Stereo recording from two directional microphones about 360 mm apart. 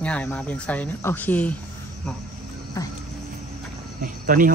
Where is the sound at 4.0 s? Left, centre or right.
Right.